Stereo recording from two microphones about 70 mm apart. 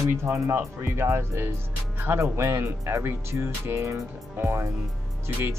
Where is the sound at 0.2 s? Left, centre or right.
Right.